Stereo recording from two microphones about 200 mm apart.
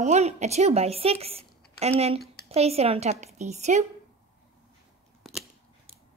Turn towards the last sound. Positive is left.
turn(degrees=0)  # may be behind; listen again after turning